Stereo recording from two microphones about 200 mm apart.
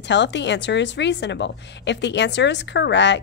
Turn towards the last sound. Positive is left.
turn(degrees=60)  # may be behind; listen again after turning